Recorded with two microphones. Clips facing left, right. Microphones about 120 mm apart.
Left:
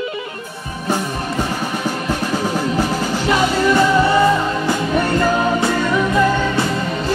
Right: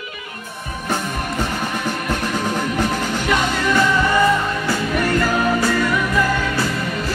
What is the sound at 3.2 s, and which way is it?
Music, 30° left (ahead or behind).